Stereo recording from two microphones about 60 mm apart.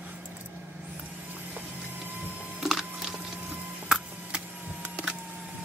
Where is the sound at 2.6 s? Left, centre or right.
Centre.